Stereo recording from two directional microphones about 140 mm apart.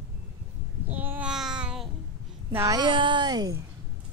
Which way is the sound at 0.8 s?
10° right (ahead or behind).